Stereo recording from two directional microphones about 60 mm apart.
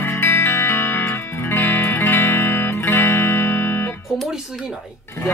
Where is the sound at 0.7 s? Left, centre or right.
Left.